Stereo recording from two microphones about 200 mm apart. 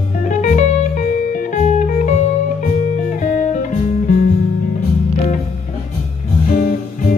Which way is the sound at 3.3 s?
40° left (ahead or behind).